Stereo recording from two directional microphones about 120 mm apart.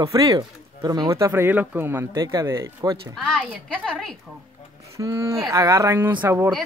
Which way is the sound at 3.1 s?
5° left (ahead or behind).